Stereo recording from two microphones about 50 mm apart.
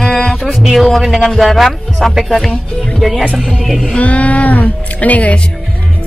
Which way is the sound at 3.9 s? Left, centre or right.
Left.